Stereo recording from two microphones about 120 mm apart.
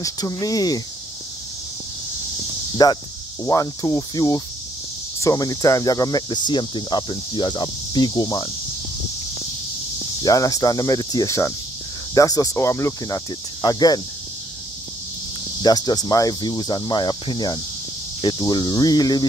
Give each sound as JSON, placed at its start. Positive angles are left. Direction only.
{"t": 0.0, "sound": "speech", "side_deg": 30}
{"t": 2.8, "sound": "speech", "side_deg": 30}
{"t": 3.4, "sound": "cricket", "side_deg": 30}
{"t": 5.2, "sound": "speech", "side_deg": 30}
{"t": 10.2, "sound": "speech", "side_deg": 30}
{"t": 15.6, "sound": "speech", "side_deg": 35}